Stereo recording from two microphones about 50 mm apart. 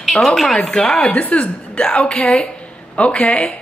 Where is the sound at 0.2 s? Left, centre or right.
Centre.